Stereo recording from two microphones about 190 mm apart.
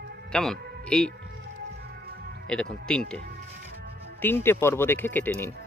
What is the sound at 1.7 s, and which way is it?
Music, 55° right (ahead or behind).